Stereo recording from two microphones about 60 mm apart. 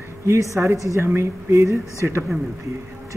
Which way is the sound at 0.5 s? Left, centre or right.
Right.